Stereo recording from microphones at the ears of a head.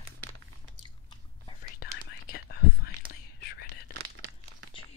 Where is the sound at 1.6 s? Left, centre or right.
Left.